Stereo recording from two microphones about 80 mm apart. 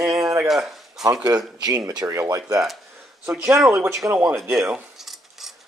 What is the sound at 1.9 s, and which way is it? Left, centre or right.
Speech, right.